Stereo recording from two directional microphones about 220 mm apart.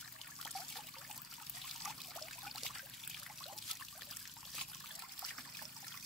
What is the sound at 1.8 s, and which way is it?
Trickle, centre (ahead or behind).